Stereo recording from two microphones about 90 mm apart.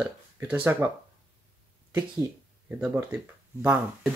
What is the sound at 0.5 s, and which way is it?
Speech, 20° right (ahead or behind).